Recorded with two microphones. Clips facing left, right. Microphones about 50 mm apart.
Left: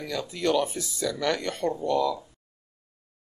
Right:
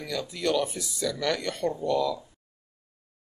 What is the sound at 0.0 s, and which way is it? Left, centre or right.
Speech, centre.